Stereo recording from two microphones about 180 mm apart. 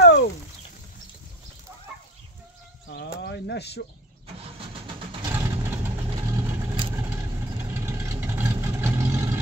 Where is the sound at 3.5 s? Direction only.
65° left (ahead or behind).